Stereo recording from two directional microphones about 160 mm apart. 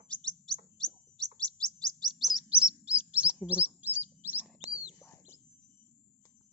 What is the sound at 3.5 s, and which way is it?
Bird, 10° right (ahead or behind).